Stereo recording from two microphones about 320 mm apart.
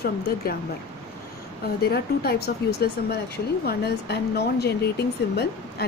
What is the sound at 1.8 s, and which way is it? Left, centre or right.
Speech, left.